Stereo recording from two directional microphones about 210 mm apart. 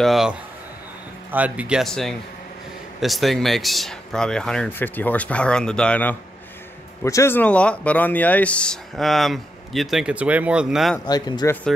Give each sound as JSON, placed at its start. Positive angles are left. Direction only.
{"t": 0.0, "sound": "speech", "side_deg": 0}
{"t": 11.1, "sound": "speech", "side_deg": 20}